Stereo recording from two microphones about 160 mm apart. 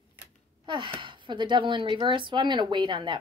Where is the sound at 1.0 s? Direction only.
30° right (ahead or behind).